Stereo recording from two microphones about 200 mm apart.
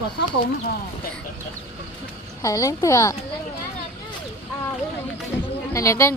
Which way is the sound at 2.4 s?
15° left (ahead or behind).